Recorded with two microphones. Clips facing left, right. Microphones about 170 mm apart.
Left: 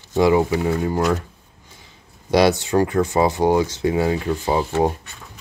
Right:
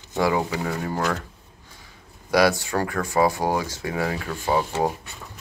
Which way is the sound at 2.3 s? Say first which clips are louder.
Left 4 dB; 25° left (ahead or behind).